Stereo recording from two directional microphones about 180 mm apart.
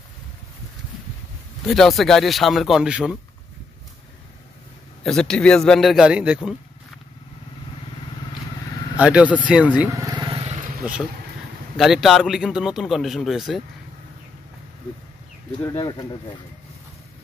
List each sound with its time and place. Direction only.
1.6 s a man's voice: centre (ahead or behind)
5.0 s a man's voice: 5° left (ahead or behind)
8.9 s speech: 5° right (ahead or behind)
9.8 s vehicle: 20° right (ahead or behind)
10.4 s vehicle: 45° right (ahead or behind)
11.7 s a man's voice: centre (ahead or behind)
15.7 s speech: 25° left (ahead or behind)